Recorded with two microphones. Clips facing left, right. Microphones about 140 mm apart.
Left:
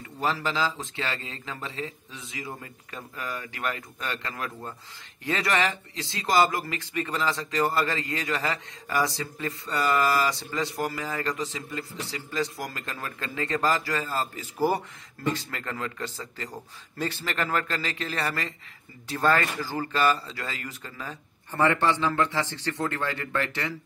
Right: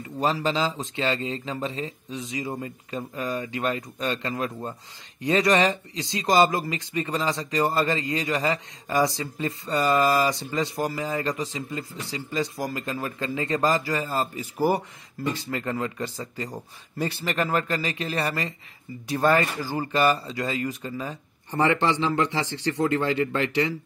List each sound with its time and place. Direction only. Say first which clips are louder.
0.2 s a man's voice: right 3 dB; 20° right (ahead or behind)